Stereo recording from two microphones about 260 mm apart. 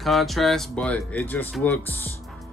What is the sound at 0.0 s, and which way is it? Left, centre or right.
Speech, centre.